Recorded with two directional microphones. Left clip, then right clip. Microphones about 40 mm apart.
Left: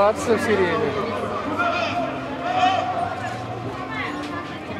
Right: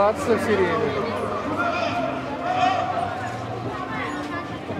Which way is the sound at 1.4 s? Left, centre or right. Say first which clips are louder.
Left 3 dB; left.